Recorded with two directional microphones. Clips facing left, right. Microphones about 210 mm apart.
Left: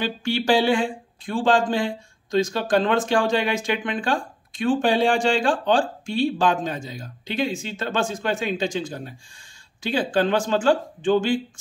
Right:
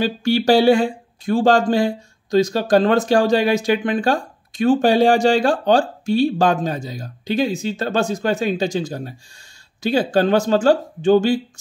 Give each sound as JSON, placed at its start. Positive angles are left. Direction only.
{"t": 0.0, "sound": "speech", "side_deg": -40}